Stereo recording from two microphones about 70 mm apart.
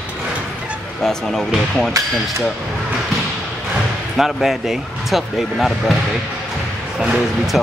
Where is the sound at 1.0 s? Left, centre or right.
Centre.